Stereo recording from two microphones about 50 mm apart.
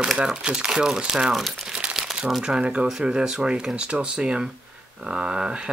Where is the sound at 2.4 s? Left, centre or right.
Centre.